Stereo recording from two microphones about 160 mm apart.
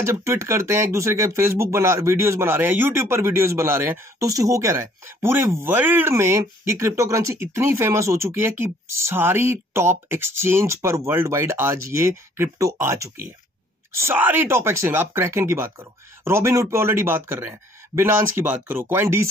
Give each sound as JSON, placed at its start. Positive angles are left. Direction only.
{"t": 0.0, "sound": "speech", "side_deg": -15}